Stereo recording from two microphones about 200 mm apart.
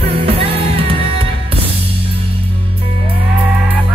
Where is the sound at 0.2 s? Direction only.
30° right (ahead or behind).